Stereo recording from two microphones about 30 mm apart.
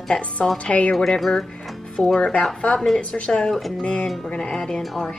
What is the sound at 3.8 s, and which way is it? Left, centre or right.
Speech, left.